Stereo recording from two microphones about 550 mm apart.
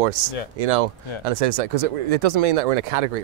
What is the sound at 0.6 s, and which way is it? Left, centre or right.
Speech, right.